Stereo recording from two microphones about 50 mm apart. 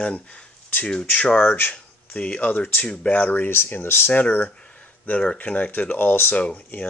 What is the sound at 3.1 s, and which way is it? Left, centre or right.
Speech, left.